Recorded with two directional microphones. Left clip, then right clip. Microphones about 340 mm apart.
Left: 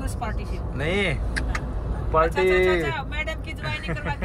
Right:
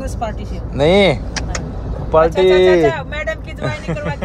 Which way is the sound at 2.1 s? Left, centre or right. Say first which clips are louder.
Right 9 dB; centre.